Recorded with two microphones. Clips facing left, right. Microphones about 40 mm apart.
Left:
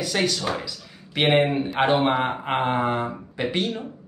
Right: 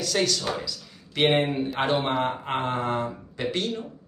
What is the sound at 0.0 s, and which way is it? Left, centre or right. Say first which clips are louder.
Speech: left 1 dB; centre.